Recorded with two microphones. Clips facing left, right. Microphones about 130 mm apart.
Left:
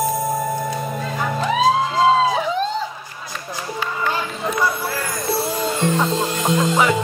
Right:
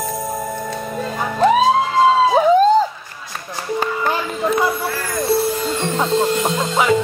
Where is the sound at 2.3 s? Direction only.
45° right (ahead or behind).